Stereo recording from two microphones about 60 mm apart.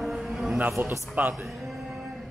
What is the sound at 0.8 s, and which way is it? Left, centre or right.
Speech, right.